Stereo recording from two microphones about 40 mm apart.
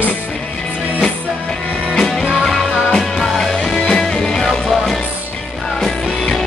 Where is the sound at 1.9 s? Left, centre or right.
Centre.